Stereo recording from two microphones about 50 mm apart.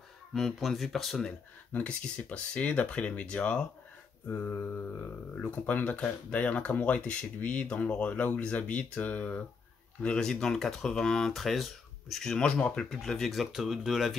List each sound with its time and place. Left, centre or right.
0.3 s speech: centre
1.8 s speech: left
4.3 s speech: left
10.0 s speech: centre
11.3 s speech: centre
12.2 s speech: centre